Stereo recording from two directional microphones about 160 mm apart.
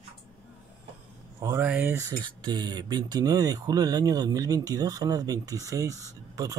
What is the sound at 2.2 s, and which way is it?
Speech, 25° right (ahead or behind).